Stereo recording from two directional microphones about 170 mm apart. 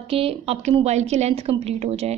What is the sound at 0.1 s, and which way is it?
A woman's voice, 35° right (ahead or behind).